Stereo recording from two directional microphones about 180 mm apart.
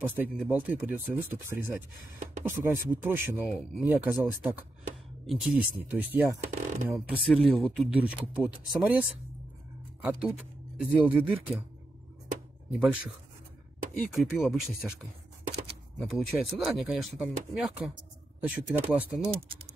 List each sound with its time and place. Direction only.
0.0 s speech: 10° right (ahead or behind)
6.5 s speech: 45° right (ahead or behind)
6.9 s speech: centre (ahead or behind)
10.0 s speech: 5° right (ahead or behind)
12.7 s speech: 5° right (ahead or behind)
14.1 s speech: centre (ahead or behind)